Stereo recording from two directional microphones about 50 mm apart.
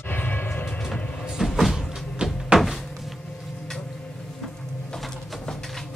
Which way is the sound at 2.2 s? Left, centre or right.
Centre.